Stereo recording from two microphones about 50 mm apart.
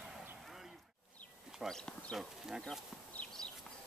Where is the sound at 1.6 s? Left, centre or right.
Centre.